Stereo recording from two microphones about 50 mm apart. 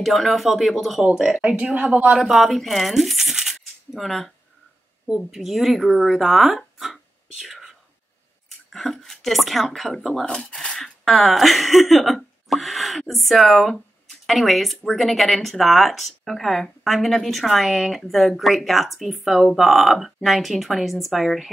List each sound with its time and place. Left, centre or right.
0.0 s speech: centre
1.1 s speech: centre
1.7 s speech: right
2.1 s speech: centre
5.3 s speech: centre
8.7 s speech: centre